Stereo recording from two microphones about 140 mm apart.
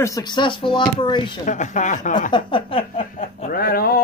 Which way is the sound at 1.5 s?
60° left (ahead or behind).